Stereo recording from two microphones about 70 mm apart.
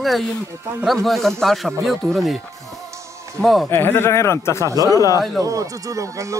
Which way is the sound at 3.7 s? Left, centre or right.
Left.